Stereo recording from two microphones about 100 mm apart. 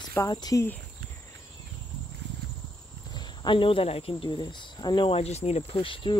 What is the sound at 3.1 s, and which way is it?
Speech, 50° left (ahead or behind).